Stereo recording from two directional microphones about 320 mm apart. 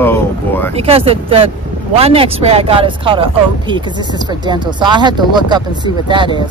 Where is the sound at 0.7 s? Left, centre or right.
Centre.